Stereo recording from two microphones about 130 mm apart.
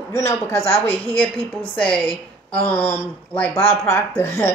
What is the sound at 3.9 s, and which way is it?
Speech, 20° left (ahead or behind).